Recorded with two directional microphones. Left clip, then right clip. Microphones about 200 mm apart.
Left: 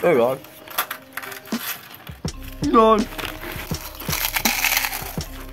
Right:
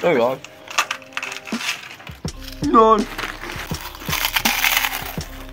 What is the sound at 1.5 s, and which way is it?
Coin, centre (ahead or behind).